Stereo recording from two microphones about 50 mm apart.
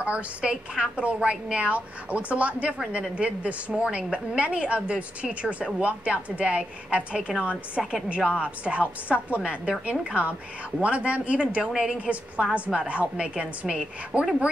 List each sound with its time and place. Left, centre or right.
0.0 s a woman's voice: right
12.5 s a woman's voice: right